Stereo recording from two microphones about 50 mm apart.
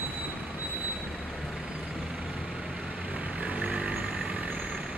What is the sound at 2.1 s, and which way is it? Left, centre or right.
Vehicle, centre.